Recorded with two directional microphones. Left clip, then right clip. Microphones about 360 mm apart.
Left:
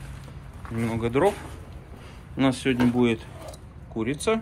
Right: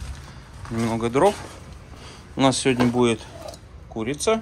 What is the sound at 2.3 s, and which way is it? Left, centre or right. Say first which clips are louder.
Speech: right 4 dB; centre.